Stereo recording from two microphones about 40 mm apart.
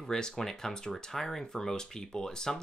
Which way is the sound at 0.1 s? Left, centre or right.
Centre.